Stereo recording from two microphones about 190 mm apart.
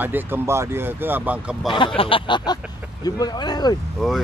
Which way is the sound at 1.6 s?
25° left (ahead or behind).